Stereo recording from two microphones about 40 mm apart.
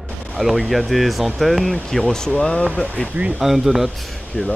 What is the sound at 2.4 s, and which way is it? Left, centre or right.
Speech, left.